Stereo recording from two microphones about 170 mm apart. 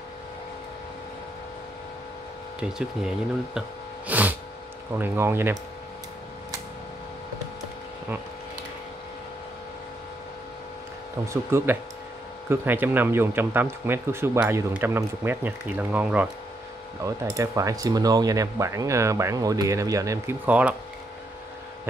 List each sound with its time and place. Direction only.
2.6 s speech: 5° right (ahead or behind)
4.1 s a sound: 10° right (ahead or behind)
4.9 s speech: 15° right (ahead or behind)
11.2 s speech: 15° right (ahead or behind)
17.0 s speech: 20° right (ahead or behind)